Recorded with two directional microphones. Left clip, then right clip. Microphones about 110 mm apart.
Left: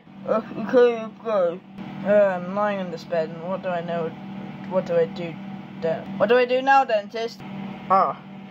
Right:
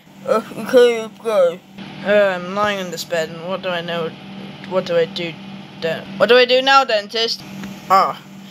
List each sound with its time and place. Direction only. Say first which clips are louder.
0.3 s speech: right 6 dB; 20° right (ahead or behind)
2.0 s speech: right 4 dB; 5° right (ahead or behind)